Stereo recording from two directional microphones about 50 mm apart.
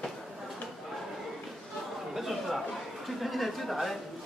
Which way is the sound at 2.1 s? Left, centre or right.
Centre.